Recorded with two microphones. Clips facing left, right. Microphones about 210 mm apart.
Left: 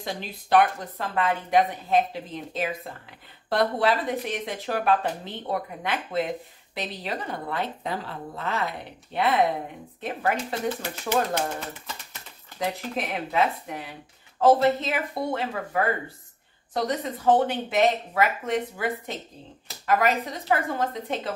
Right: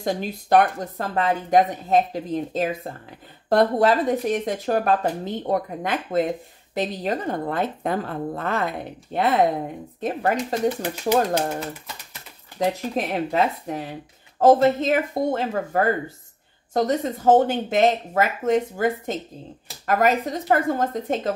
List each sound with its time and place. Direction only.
0.0 s speech: 45° right (ahead or behind)
12.5 s speech: 35° right (ahead or behind)